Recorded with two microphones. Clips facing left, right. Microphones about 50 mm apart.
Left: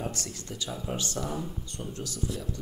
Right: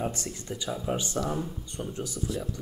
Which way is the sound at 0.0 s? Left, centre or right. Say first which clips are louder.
Right 3 dB; right.